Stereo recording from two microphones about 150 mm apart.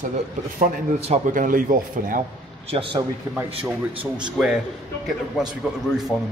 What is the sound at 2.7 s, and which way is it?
A man's voice, 35° right (ahead or behind).